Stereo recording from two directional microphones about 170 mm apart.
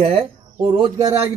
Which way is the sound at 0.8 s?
20° right (ahead or behind).